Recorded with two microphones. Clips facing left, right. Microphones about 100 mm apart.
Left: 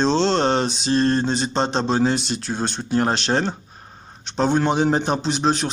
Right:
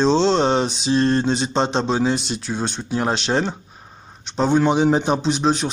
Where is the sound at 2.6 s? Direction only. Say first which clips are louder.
Left 2 dB; 5° right (ahead or behind).